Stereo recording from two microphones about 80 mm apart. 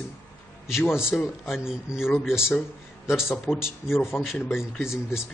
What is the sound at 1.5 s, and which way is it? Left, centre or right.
Speech, centre.